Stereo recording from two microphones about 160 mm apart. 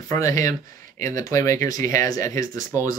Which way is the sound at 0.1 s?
20° left (ahead or behind).